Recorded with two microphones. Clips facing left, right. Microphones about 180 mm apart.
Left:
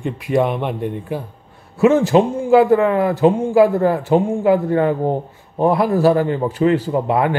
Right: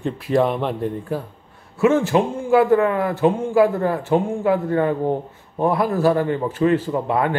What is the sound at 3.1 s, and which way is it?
A man's voice, 15° left (ahead or behind).